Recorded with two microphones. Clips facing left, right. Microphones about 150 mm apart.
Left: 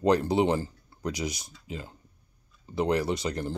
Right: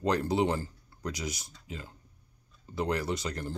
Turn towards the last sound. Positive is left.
turn(degrees=20)  # may be behind; listen again after turning